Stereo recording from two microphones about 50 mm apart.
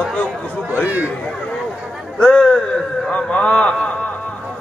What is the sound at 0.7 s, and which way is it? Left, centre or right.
Speech, right.